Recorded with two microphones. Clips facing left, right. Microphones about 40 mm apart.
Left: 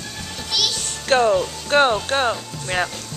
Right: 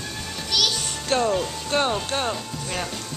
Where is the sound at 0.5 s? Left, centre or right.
Centre.